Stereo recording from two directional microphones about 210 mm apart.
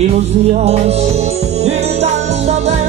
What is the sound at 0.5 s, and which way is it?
Music, 30° right (ahead or behind).